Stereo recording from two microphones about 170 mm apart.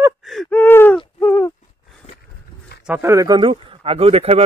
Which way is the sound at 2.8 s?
10° right (ahead or behind).